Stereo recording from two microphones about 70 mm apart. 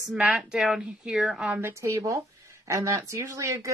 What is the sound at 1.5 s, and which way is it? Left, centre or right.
Speech, right.